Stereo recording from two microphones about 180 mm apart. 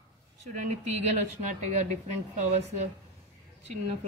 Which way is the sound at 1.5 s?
40° right (ahead or behind).